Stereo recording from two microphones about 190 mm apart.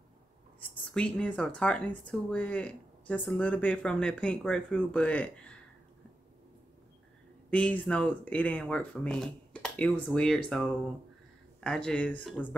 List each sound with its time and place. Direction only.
0.6 s speech: 5° left (ahead or behind)
7.5 s speech: 5° left (ahead or behind)